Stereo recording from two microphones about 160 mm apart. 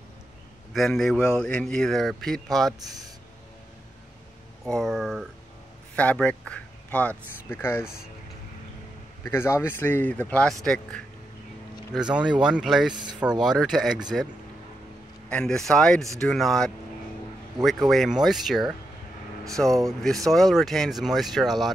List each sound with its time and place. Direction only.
0.7 s speech: centre (ahead or behind)
4.6 s speech: centre (ahead or behind)
7.8 s speech: 5° right (ahead or behind)
9.2 s a man's voice: 15° left (ahead or behind); by 12.9 s 5° right (ahead or behind)
12.9 s speech: 25° right (ahead or behind)
13.2 s speech: 5° right (ahead or behind)
15.2 s speech: 5° left (ahead or behind)